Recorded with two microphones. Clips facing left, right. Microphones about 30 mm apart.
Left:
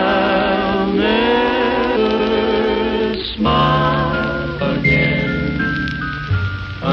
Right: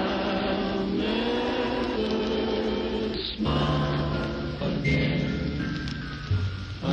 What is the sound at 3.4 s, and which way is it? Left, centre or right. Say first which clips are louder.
Music: left 13 dB; left.